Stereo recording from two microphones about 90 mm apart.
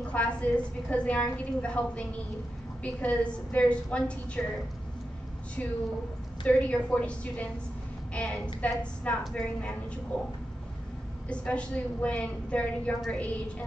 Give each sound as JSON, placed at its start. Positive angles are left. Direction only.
{"t": 0.1, "sound": "a woman's voice", "side_deg": 15}
{"t": 5.6, "sound": "a woman's voice", "side_deg": 15}
{"t": 11.2, "sound": "a woman's voice", "side_deg": 15}